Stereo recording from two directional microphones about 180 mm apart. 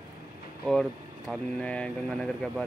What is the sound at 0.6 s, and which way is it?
Speech, centre (ahead or behind).